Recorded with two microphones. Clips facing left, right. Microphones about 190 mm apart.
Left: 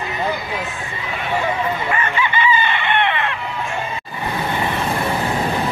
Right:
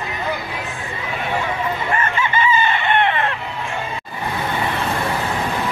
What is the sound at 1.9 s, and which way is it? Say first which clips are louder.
Chicken: even; 45° right (ahead or behind).